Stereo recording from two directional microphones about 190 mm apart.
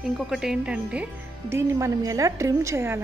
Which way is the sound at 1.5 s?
15° right (ahead or behind).